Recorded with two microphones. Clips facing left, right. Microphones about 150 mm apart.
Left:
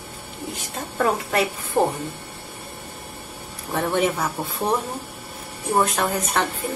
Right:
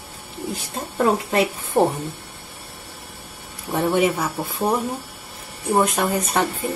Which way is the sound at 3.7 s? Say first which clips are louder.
Right 3 dB; 10° right (ahead or behind).